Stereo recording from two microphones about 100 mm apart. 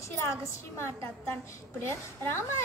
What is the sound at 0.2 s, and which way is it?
A child's voice, 30° left (ahead or behind).